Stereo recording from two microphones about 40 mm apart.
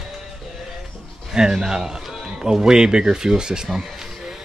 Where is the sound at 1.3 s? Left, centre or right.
Centre.